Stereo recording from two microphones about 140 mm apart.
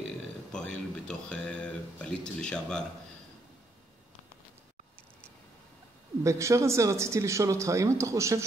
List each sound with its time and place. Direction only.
0.5 s speech: 5° left (ahead or behind)
6.2 s speech: 20° right (ahead or behind)